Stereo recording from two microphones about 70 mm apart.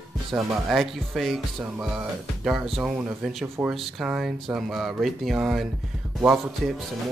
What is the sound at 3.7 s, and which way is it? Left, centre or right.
Speech, centre.